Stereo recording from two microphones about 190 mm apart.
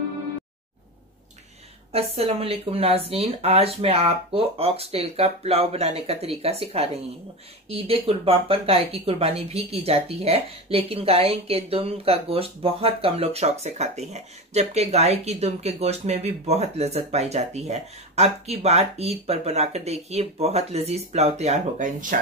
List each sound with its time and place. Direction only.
1.9 s speech: 30° right (ahead or behind)